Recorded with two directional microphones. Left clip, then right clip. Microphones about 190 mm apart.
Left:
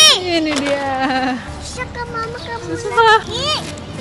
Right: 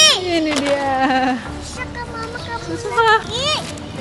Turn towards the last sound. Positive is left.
turn(degrees=0)  # may be behind; listen again after turning